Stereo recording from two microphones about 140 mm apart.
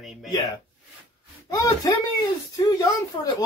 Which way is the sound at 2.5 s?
25° left (ahead or behind).